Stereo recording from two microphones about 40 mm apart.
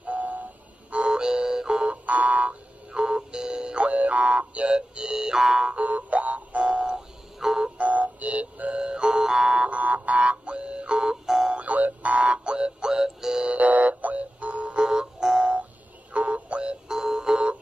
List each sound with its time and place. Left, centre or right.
0.0 s a sound: right
0.9 s music: right
1.9 s a sound: right
2.9 s music: centre
3.9 s music: right; by 5.7 s centre
5.8 s music: right
7.3 s music: centre
7.7 s music: right; by 9.7 s centre
9.7 s a sound: right
10.2 s music: right
11.5 s music: right; by 13.5 s centre
13.5 s music: right
16.1 s music: right
16.8 s music: centre